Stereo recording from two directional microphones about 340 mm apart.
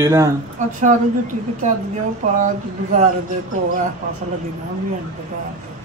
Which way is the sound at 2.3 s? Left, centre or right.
Right.